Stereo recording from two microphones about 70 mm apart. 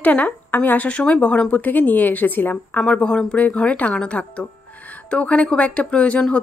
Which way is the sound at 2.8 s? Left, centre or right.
Centre.